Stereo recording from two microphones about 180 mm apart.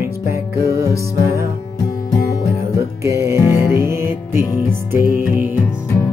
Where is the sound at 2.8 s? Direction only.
15° right (ahead or behind).